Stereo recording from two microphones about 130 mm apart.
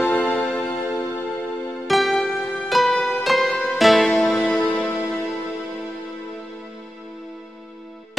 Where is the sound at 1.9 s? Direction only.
Centre (ahead or behind).